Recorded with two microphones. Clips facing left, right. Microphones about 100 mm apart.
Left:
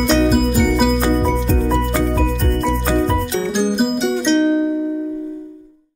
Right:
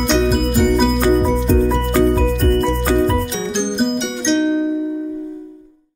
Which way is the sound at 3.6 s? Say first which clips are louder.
Left 1 dB; 5° left (ahead or behind).